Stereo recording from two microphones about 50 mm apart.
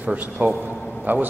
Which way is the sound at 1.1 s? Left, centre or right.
Right.